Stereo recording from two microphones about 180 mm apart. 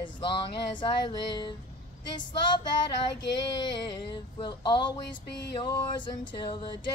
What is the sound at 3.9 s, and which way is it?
Speech, 25° left (ahead or behind).